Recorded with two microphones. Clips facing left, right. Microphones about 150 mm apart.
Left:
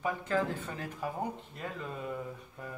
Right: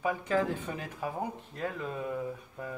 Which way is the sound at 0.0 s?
15° right (ahead or behind).